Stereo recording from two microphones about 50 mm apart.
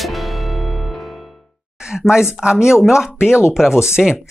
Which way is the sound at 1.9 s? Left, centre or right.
Centre.